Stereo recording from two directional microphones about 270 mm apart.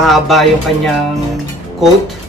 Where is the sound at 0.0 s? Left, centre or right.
Centre.